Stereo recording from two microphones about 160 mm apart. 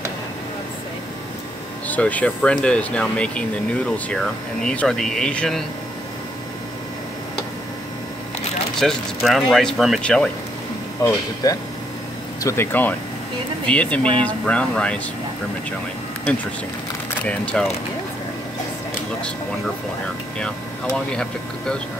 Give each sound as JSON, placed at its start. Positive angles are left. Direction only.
{"t": 1.9, "sound": "speech", "side_deg": 10}
{"t": 8.7, "sound": "speech", "side_deg": 0}
{"t": 11.4, "sound": "speech", "side_deg": 20}
{"t": 17.2, "sound": "speech", "side_deg": 5}
{"t": 20.3, "sound": "speech", "side_deg": 5}